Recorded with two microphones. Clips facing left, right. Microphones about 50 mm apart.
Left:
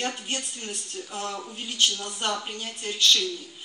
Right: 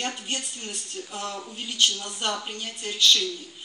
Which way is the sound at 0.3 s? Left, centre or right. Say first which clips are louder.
Even; left.